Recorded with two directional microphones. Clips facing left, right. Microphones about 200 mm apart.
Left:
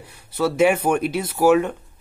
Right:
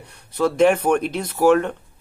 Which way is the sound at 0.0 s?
5° left (ahead or behind).